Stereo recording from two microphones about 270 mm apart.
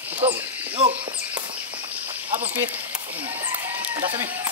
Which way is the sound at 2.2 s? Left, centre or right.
Centre.